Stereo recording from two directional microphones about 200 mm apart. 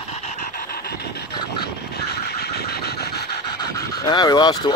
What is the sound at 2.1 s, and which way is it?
Vehicle, 55° left (ahead or behind).